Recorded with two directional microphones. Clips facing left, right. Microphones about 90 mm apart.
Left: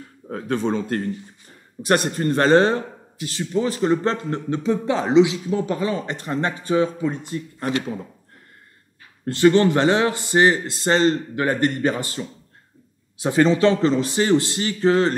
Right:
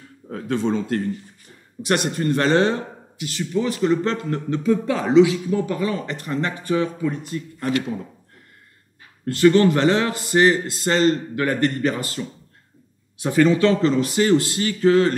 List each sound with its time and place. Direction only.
0.3 s a man's voice: 40° left (ahead or behind); by 7.8 s 25° left (ahead or behind)
9.2 s speech: 25° left (ahead or behind)